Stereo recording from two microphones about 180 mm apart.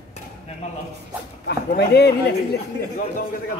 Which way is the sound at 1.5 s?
65° left (ahead or behind).